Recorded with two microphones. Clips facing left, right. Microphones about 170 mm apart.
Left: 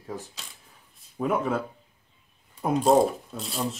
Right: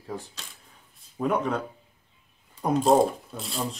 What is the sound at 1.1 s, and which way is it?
Speech, centre (ahead or behind).